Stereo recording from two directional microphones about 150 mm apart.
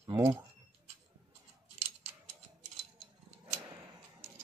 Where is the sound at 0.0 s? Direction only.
25° right (ahead or behind).